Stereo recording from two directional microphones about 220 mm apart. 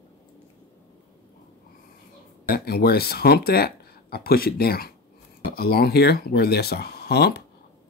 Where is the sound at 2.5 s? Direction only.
45° left (ahead or behind).